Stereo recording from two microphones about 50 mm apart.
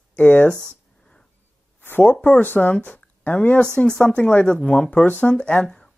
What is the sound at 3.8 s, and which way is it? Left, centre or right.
Speech, centre.